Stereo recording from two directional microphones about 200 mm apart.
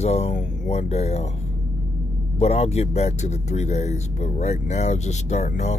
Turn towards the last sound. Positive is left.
turn(degrees=35)  # may be behind; listen again after turning